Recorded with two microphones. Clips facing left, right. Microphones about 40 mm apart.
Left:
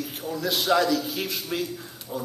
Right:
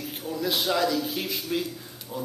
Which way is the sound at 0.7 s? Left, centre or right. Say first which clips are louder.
Left 6 dB; centre.